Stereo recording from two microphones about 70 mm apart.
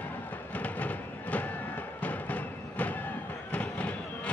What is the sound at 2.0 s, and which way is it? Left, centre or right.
Music, left.